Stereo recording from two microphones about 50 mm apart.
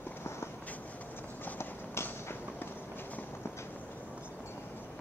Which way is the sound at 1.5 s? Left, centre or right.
Left.